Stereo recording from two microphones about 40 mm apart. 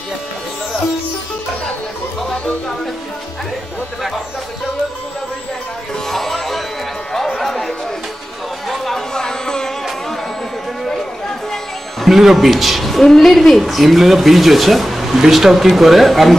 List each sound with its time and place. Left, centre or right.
6.0 s music: centre
7.3 s a sound: centre
8.6 s chatter: centre
9.1 s music: centre
12.0 s a woman's voice: centre